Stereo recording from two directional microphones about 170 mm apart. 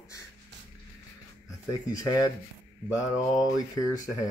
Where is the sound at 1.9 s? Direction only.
20° left (ahead or behind).